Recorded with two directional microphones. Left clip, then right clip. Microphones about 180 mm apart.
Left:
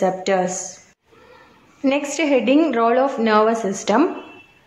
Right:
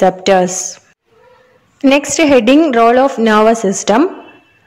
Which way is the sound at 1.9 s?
45° right (ahead or behind).